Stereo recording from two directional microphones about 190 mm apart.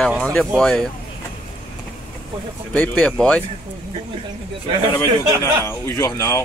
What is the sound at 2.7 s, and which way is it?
Speech, 5° left (ahead or behind).